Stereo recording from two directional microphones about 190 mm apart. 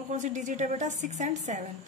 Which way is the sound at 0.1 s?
40° right (ahead or behind).